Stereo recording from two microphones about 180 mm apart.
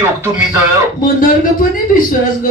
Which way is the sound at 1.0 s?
50° left (ahead or behind).